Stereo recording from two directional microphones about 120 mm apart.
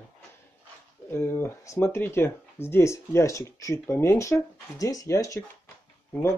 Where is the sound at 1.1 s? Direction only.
20° left (ahead or behind).